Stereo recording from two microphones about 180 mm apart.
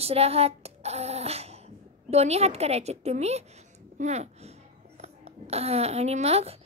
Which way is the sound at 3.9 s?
40° right (ahead or behind).